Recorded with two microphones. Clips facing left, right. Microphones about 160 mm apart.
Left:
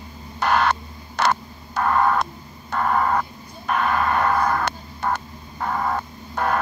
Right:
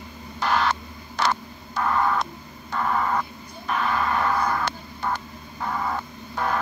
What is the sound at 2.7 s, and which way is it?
Vehicle, 55° left (ahead or behind).